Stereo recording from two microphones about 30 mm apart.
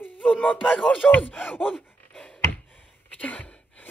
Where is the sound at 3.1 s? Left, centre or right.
Left.